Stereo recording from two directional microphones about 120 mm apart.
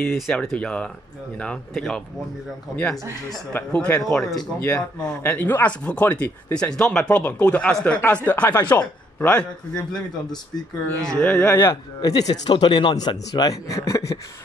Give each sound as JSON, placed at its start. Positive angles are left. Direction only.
{"t": 0.0, "sound": "speech", "side_deg": 5}
{"t": 11.1, "sound": "speech", "side_deg": 10}
{"t": 11.4, "sound": "speech", "side_deg": 20}